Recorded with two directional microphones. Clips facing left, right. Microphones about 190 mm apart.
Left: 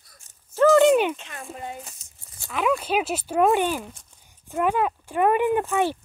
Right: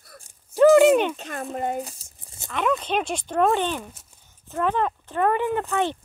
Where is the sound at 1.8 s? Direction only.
35° right (ahead or behind).